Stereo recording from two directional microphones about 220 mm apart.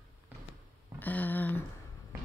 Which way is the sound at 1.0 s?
10° left (ahead or behind).